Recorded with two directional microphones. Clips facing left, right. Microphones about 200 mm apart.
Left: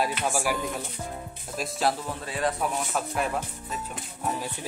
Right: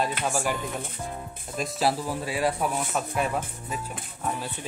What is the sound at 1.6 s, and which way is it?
Speech, 5° right (ahead or behind).